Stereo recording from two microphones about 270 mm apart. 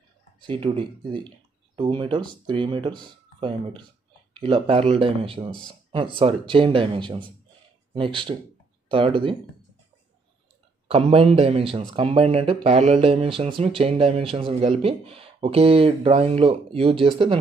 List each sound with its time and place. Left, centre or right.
0.4 s speech: centre
5.7 s a sound: centre
6.1 s speech: centre
8.3 s speech: centre
10.9 s speech: right